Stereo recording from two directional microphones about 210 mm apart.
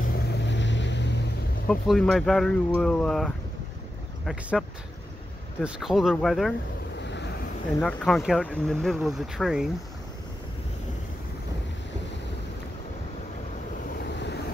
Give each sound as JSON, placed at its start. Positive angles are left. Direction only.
{"t": 0.0, "sound": "vehicle", "side_deg": 50}
{"t": 1.7, "sound": "speech", "side_deg": 5}
{"t": 7.0, "sound": "vehicle", "side_deg": 55}
{"t": 7.8, "sound": "speech", "side_deg": 5}
{"t": 14.0, "sound": "vehicle", "side_deg": 55}